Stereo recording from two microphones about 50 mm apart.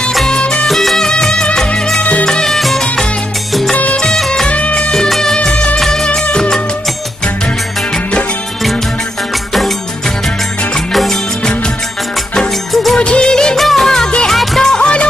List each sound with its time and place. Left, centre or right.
0.3 s music: centre
0.7 s music: centre
2.0 s music: left
2.2 s music: centre
3.7 s music: left
4.0 s music: centre
4.5 s music: left
4.9 s music: centre
5.8 s music: centre
10.9 s music: centre
12.9 s music of bollywood: centre
13.6 s music: centre
14.8 s music: left